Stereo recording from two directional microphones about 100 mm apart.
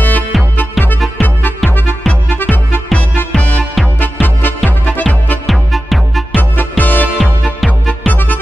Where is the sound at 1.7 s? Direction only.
20° left (ahead or behind).